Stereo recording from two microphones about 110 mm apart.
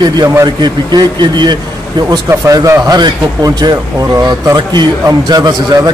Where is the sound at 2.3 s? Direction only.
30° right (ahead or behind).